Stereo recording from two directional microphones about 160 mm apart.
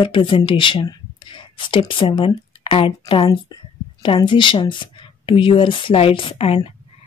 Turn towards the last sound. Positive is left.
turn(degrees=35)  # may be behind; listen again after turning